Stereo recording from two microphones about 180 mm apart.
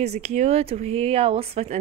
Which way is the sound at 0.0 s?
35° right (ahead or behind).